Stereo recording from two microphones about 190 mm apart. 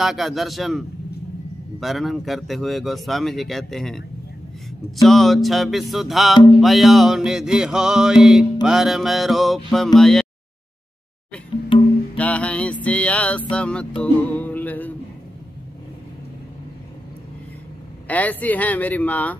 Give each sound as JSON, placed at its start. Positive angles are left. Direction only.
{"t": 0.0, "sound": "a man's voice", "side_deg": 0}
{"t": 5.0, "sound": "a man's voice", "side_deg": 0}
{"t": 11.7, "sound": "music", "side_deg": 25}
{"t": 12.2, "sound": "music", "side_deg": 5}
{"t": 12.8, "sound": "speech", "side_deg": 5}
{"t": 18.0, "sound": "speech", "side_deg": 10}